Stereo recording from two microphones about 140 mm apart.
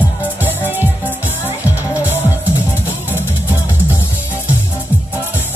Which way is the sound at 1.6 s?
10° right (ahead or behind).